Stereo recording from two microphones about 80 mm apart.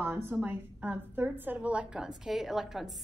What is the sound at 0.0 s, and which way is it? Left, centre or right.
A woman's voice, right.